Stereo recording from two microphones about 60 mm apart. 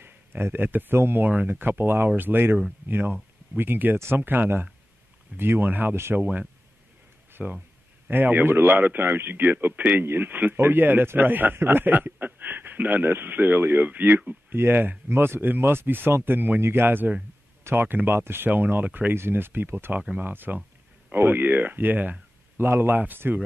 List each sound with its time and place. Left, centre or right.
0.0 s a man's voice: right
6.1 s speech: right
7.4 s speech: centre
8.1 s a man's voice: right